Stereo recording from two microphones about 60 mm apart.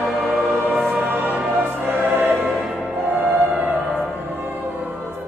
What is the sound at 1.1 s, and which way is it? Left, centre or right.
Music, right.